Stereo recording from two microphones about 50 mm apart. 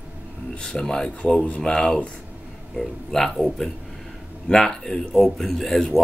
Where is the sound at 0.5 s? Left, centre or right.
Left.